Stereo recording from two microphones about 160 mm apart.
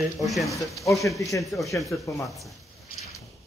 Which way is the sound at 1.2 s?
20° left (ahead or behind).